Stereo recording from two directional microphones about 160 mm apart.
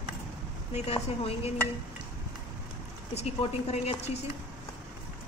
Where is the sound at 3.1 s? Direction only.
40° left (ahead or behind).